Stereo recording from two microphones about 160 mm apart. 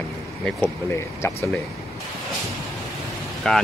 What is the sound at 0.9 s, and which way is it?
Speech, 15° left (ahead or behind).